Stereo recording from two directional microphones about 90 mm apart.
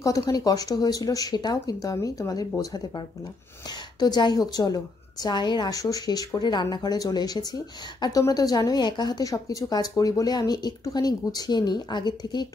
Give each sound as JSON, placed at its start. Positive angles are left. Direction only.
{"t": 0.0, "sound": "a woman's voice", "side_deg": 40}
{"t": 4.0, "sound": "a woman's voice", "side_deg": 50}